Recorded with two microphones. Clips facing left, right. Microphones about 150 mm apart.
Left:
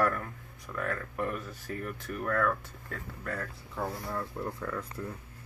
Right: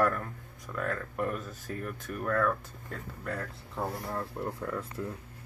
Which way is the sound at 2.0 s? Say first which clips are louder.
Right 1 dB; 15° right (ahead or behind).